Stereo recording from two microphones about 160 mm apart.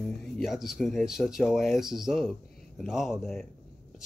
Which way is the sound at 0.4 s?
Centre (ahead or behind).